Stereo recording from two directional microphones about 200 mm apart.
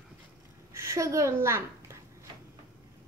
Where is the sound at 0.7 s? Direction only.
15° right (ahead or behind).